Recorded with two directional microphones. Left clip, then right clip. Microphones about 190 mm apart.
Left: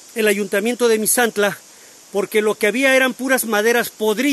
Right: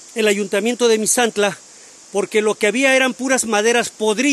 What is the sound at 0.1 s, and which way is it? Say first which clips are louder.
Speech: even; 15° right (ahead or behind).